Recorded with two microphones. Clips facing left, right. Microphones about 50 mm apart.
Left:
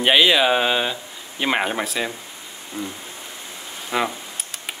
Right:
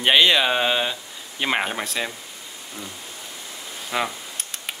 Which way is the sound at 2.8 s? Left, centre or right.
Left.